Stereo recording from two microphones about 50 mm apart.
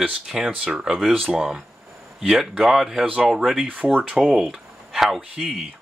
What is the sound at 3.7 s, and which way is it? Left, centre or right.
Speech, right.